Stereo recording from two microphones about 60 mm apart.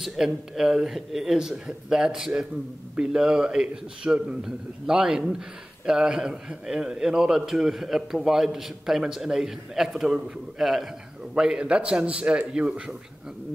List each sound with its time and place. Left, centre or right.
0.0 s a man's voice: centre